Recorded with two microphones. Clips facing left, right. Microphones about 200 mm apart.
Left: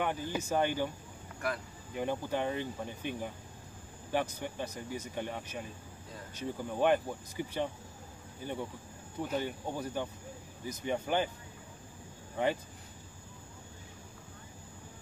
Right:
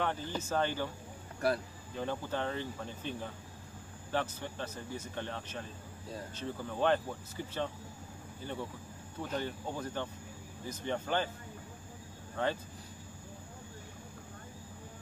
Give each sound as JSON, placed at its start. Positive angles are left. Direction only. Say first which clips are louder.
{"t": 0.0, "sound": "speech", "louder": "left 1 dB", "side_deg": 10}
{"t": 1.4, "sound": "speech", "louder": "right 5 dB", "side_deg": -35}
{"t": 2.0, "sound": "speech", "louder": "left 2 dB", "side_deg": 15}
{"t": 12.4, "sound": "speech", "louder": "left 3 dB", "side_deg": 15}